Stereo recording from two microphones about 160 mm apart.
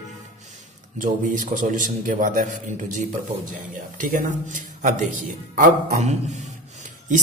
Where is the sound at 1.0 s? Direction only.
55° right (ahead or behind).